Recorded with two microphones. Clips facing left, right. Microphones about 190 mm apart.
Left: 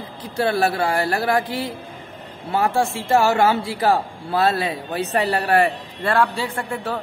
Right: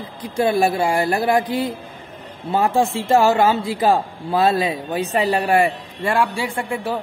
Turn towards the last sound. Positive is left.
turn(degrees=-15)  # may be behind; listen again after turning